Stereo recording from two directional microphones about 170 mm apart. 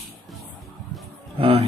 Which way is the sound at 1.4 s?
35° right (ahead or behind).